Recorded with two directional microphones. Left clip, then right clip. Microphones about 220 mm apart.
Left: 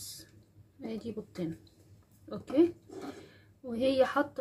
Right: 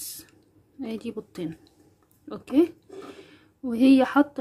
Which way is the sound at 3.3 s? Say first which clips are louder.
Right 11 dB; 50° right (ahead or behind).